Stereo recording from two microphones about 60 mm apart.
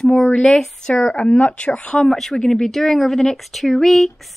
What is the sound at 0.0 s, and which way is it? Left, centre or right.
A woman's voice, centre.